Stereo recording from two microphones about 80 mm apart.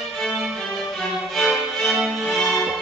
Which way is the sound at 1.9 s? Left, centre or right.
Centre.